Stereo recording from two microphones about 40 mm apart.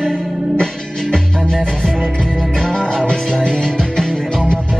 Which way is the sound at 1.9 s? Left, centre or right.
Centre.